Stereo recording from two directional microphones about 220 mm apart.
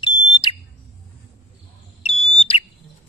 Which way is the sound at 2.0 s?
30° left (ahead or behind).